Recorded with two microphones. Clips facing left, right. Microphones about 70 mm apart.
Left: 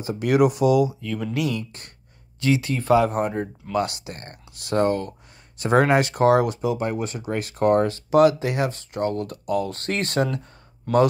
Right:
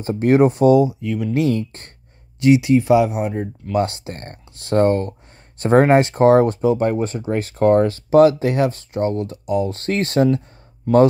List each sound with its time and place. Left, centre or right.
0.0 s speech: right
1.0 s speech: centre
1.3 s speech: right
2.4 s speech: centre
3.7 s speech: right
9.8 s speech: right